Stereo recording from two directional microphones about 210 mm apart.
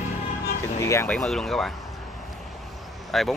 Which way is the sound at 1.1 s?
Centre (ahead or behind).